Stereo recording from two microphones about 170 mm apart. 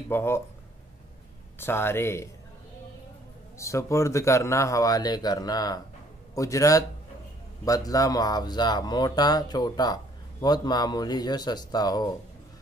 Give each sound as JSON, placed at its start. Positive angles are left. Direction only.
{"t": 0.1, "sound": "a man's voice", "side_deg": 15}
{"t": 1.6, "sound": "a man's voice", "side_deg": 15}
{"t": 3.5, "sound": "speech", "side_deg": 15}